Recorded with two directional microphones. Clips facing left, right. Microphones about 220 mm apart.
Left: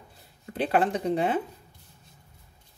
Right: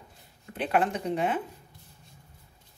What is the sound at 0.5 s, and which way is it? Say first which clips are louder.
Speech: left 2 dB; 35° left (ahead or behind).